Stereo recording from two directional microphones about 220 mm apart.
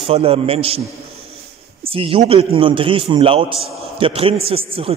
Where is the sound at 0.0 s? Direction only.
25° right (ahead or behind).